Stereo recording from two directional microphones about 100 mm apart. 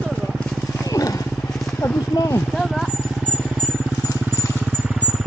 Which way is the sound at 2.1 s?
30° left (ahead or behind).